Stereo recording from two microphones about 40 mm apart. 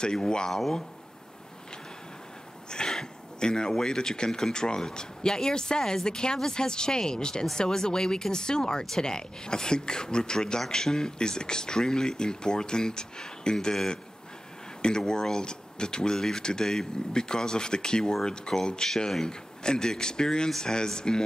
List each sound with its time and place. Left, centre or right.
0.0 s speech: centre
0.5 s speech: centre
2.7 s speech: centre